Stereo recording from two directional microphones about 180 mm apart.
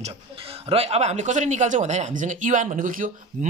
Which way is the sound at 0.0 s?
30° right (ahead or behind).